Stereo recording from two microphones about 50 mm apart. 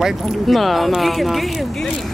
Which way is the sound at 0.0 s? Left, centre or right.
Centre.